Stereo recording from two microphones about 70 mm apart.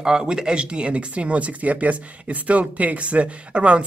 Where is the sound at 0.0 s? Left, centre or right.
Centre.